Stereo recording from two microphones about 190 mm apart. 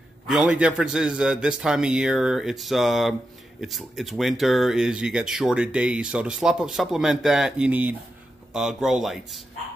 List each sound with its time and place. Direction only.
0.3 s speech: 5° right (ahead or behind)